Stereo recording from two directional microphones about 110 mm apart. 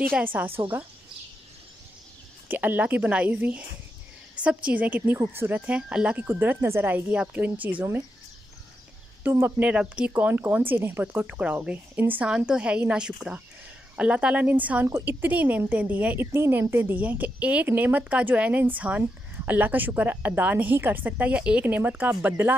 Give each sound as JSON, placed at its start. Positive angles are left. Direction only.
{"t": 0.2, "sound": "a woman's voice", "side_deg": -15}
{"t": 2.4, "sound": "a woman's voice", "side_deg": -15}
{"t": 4.6, "sound": "a woman's voice", "side_deg": -15}
{"t": 9.2, "sound": "a woman's voice", "side_deg": -20}